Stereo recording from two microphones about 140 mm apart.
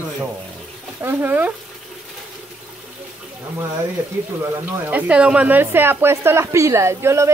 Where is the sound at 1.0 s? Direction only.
15° right (ahead or behind).